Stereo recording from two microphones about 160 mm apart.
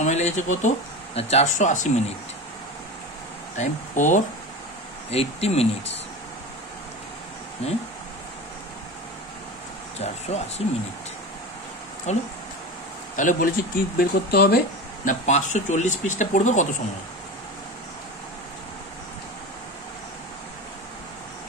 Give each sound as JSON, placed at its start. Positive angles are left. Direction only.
{"t": 0.0, "sound": "speech", "side_deg": 45}
{"t": 3.5, "sound": "speech", "side_deg": 50}
{"t": 5.1, "sound": "speech", "side_deg": 40}
{"t": 7.6, "sound": "speech", "side_deg": 40}
{"t": 9.9, "sound": "speech", "side_deg": 40}
{"t": 12.1, "sound": "speech", "side_deg": 45}
{"t": 15.0, "sound": "speech", "side_deg": 50}